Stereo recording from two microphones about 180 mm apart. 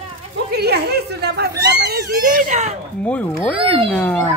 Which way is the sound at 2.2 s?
45° right (ahead or behind).